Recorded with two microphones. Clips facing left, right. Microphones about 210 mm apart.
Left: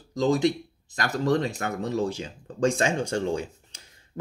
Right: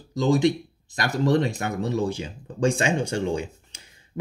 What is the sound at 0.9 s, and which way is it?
Speech, 10° right (ahead or behind).